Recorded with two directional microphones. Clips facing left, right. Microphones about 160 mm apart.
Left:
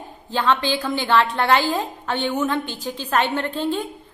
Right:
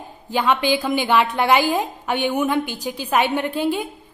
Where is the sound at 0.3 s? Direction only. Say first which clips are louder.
Right 2 dB; 15° right (ahead or behind).